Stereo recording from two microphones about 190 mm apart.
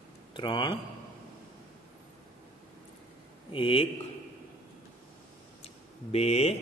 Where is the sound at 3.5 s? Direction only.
25° left (ahead or behind).